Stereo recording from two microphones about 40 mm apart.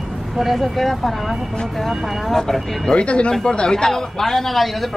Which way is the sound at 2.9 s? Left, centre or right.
Left.